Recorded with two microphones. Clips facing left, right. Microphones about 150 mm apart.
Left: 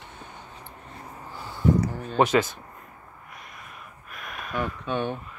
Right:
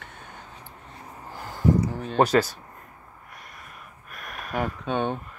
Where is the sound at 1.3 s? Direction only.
45° right (ahead or behind).